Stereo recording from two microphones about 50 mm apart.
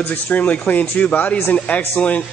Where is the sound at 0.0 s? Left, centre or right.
Left.